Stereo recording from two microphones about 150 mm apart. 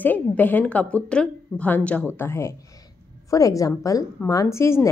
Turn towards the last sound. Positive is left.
turn(degrees=20)  # may be behind; listen again after turning